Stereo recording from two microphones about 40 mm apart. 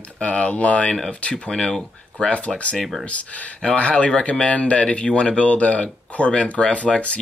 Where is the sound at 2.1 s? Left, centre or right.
Left.